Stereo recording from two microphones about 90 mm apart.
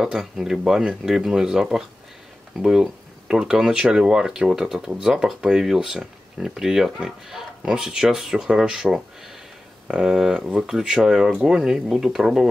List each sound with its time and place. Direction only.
0.0 s speech: 5° right (ahead or behind)